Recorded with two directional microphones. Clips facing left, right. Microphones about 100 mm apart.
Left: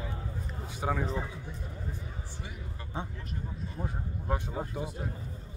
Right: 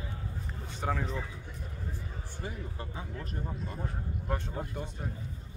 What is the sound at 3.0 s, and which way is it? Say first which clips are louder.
Speech: left 9 dB; 30° left (ahead or behind).